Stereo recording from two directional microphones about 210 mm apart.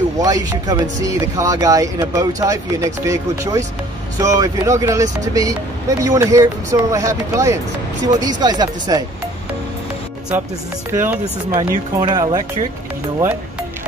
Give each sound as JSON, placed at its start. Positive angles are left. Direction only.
{"t": 0.2, "sound": "speech", "side_deg": -15}
{"t": 10.9, "sound": "speech", "side_deg": -10}
{"t": 11.5, "sound": "speech", "side_deg": -20}